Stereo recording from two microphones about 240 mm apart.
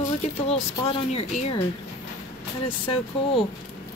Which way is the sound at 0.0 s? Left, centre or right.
Left.